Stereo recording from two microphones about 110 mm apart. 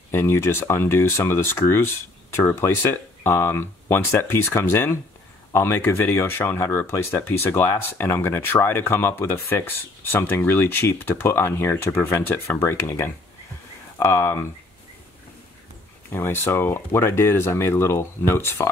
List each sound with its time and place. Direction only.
0.1 s speech: 25° left (ahead or behind)
16.1 s speech: 20° left (ahead or behind)